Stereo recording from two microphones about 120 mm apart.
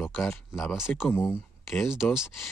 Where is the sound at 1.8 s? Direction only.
5° right (ahead or behind).